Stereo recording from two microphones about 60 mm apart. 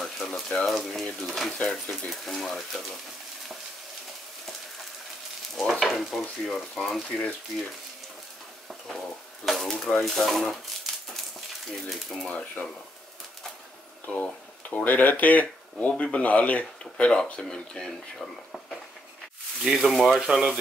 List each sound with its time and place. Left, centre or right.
0.0 s speech: centre
1.2 s stir: centre
5.6 s stir: centre
8.6 s stir: centre
11.9 s stir: centre
12.3 s speech: left
14.0 s speech: left
19.6 s stir: centre
20.2 s speech: centre